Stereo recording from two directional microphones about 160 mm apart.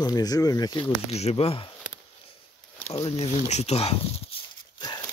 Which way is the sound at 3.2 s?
45° left (ahead or behind).